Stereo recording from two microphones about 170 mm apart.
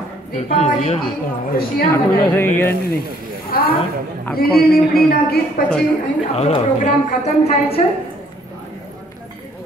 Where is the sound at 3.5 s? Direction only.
60° left (ahead or behind).